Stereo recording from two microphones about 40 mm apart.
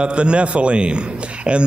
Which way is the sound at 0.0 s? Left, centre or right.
Right.